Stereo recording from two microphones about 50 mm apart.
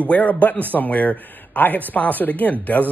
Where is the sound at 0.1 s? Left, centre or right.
Left.